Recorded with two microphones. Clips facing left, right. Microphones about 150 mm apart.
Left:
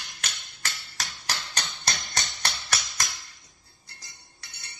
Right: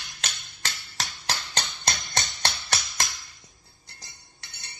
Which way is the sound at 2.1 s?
25° right (ahead or behind).